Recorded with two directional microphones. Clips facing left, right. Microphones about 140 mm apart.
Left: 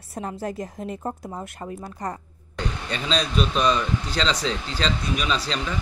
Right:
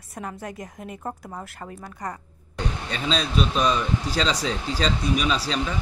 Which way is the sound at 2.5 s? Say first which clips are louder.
Even; 5° right (ahead or behind).